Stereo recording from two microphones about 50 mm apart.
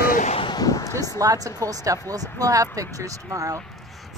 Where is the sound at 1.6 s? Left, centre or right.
Right.